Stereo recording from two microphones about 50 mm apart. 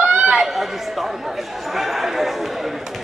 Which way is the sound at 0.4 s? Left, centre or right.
Centre.